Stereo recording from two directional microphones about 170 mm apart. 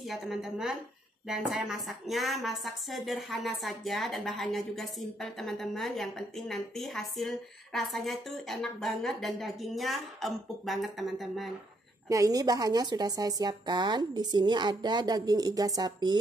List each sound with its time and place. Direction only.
0.0 s a woman's voice: centre (ahead or behind)
12.1 s speech: 20° right (ahead or behind)